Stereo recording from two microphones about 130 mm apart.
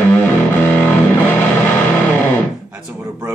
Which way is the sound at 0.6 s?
15° left (ahead or behind).